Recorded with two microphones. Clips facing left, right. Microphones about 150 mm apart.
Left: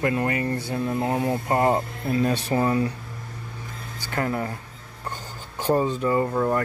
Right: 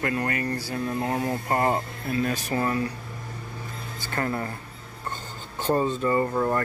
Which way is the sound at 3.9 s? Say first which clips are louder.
Left 2 dB; 10° left (ahead or behind).